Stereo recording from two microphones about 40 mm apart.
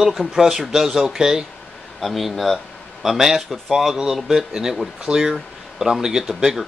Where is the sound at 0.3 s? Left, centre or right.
Centre.